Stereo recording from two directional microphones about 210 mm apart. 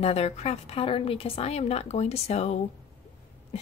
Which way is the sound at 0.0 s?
30° left (ahead or behind).